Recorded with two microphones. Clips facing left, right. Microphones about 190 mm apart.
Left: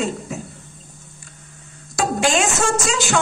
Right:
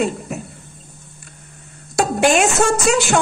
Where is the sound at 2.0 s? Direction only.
60° right (ahead or behind).